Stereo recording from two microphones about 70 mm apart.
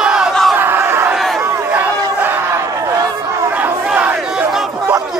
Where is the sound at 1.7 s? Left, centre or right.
Right.